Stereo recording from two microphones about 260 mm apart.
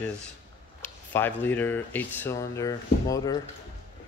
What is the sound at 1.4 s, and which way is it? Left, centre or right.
Speech, centre.